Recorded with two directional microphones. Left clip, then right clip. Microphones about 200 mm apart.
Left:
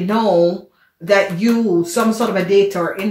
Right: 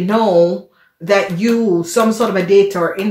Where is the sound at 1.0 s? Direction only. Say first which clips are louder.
Even; 40° right (ahead or behind).